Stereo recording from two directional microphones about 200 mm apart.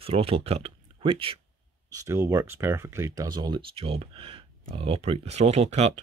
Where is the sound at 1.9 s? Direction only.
15° right (ahead or behind).